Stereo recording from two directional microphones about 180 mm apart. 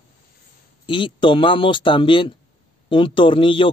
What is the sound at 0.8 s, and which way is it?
A man's voice, 30° left (ahead or behind).